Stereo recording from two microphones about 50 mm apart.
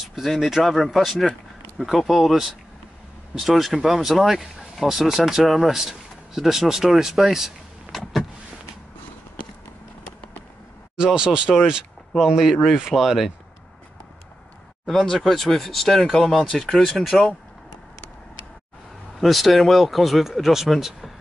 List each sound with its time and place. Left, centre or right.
0.0 s speech: centre
11.1 s speech: centre
14.9 s speech: centre
19.1 s speech: centre